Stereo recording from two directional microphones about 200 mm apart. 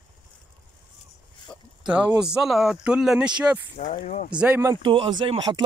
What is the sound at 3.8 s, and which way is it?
Speech, 40° left (ahead or behind).